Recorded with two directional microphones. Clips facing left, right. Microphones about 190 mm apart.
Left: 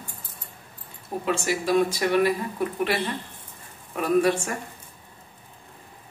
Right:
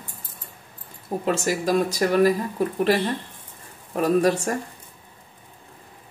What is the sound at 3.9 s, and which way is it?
Speech, 40° right (ahead or behind).